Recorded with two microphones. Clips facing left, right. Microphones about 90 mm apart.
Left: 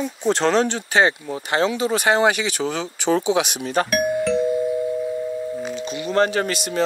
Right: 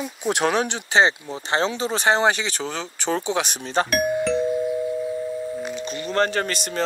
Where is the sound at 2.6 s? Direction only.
45° left (ahead or behind).